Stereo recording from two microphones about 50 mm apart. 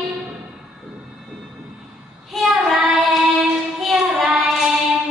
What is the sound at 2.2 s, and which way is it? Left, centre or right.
Child singing, centre.